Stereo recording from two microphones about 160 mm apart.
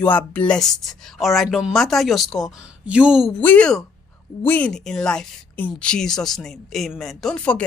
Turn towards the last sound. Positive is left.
turn(degrees=5)  # may be behind; listen again after turning